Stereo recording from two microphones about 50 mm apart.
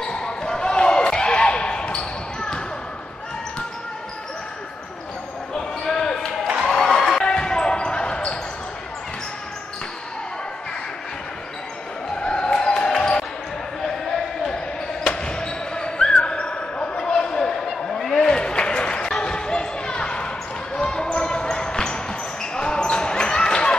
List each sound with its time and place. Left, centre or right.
0.0 s basketball bounce: centre
5.9 s basketball bounce: centre
6.4 s a sound: centre
6.7 s a sound: centre
7.2 s basketball bounce: centre
12.2 s basketball bounce: centre
15.0 s basketball bounce: centre